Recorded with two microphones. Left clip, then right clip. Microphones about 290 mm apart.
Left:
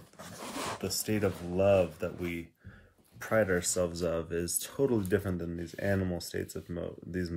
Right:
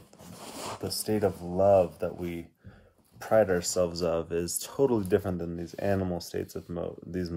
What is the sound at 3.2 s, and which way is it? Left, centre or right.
Speech, centre.